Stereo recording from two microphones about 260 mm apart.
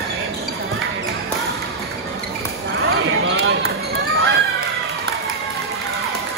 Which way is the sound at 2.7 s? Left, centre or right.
Right.